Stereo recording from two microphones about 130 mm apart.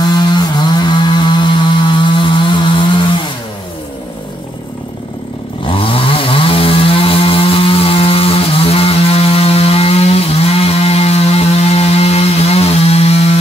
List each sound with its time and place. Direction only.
0.2 s chainsaw: 35° left (ahead or behind)
5.7 s chainsaw: 45° left (ahead or behind)